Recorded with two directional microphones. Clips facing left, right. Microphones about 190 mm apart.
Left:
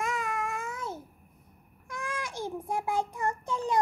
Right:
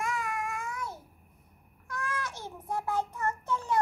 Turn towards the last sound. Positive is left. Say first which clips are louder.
# left 1 dB
turn(degrees=15)  # may be behind; listen again after turning